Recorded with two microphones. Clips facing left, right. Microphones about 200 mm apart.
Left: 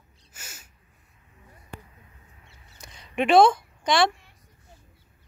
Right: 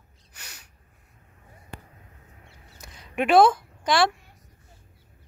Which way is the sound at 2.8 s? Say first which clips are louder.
Left 1 dB; 5° right (ahead or behind).